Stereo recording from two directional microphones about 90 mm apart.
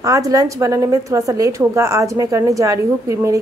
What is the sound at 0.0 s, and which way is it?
A woman's voice, 40° right (ahead or behind).